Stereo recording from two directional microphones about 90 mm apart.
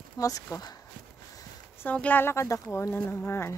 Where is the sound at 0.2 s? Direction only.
40° left (ahead or behind).